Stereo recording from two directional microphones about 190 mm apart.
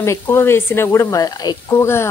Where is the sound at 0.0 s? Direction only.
15° left (ahead or behind).